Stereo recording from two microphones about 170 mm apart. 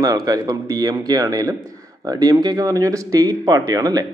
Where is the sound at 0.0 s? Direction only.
20° right (ahead or behind).